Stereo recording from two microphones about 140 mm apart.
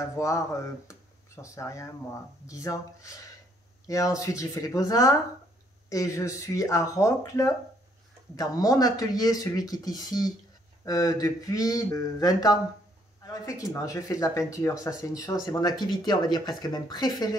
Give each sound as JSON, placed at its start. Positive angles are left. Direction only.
{"t": 0.0, "sound": "speech", "side_deg": 20}